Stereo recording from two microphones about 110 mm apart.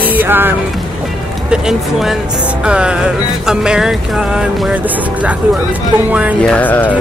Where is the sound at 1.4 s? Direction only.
5° right (ahead or behind).